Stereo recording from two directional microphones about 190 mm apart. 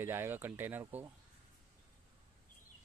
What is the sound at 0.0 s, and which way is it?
Speech, 10° right (ahead or behind).